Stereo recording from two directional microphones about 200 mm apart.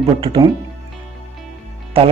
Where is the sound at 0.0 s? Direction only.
25° right (ahead or behind).